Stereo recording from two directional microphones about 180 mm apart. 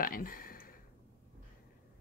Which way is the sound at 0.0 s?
50° left (ahead or behind).